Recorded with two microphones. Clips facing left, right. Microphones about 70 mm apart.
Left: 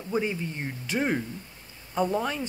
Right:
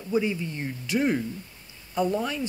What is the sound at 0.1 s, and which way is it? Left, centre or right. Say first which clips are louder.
Speech: right 2 dB; left.